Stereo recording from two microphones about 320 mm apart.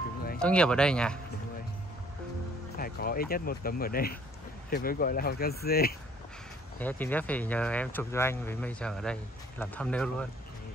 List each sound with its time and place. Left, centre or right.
0.4 s speech: centre
2.8 s speech: left
6.8 s speech: centre